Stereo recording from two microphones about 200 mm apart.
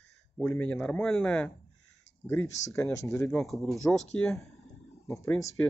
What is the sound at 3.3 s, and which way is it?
Speech, centre (ahead or behind).